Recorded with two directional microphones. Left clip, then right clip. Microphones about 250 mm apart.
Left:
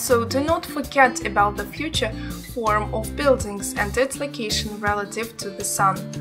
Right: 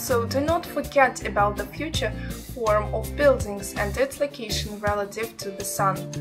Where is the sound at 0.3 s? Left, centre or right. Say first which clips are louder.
Left 2 dB; left.